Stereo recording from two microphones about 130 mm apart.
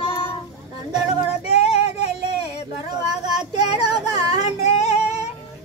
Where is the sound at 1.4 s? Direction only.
50° left (ahead or behind).